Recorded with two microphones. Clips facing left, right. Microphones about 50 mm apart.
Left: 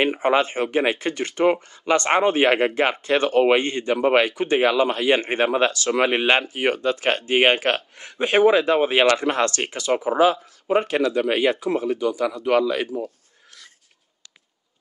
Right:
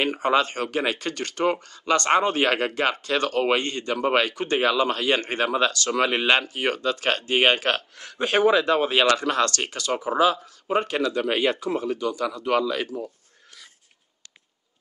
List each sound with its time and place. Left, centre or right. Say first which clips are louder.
0.0 s speech: left 2 dB; left